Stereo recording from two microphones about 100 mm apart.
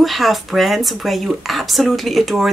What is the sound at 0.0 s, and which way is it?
Speech, centre (ahead or behind).